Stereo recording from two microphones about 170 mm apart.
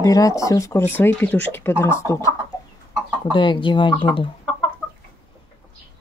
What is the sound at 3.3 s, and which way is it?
Speech, 30° left (ahead or behind).